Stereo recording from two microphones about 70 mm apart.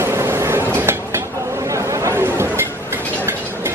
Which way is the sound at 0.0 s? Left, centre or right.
Right.